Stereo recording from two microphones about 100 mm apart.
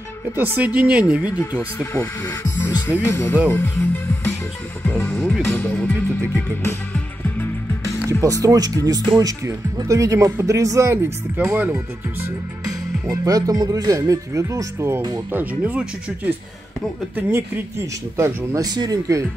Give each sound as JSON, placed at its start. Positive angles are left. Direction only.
{"t": 0.4, "sound": "speech", "side_deg": -15}
{"t": 1.8, "sound": "speech", "side_deg": 30}
{"t": 3.4, "sound": "music", "side_deg": 20}
{"t": 4.8, "sound": "speech", "side_deg": 25}
{"t": 5.1, "sound": "speech", "side_deg": 0}
{"t": 5.4, "sound": "speech", "side_deg": 20}
{"t": 8.2, "sound": "speech", "side_deg": -35}
{"t": 13.1, "sound": "speech", "side_deg": -40}
{"t": 15.0, "sound": "speech", "side_deg": -40}
{"t": 15.3, "sound": "speech", "side_deg": -15}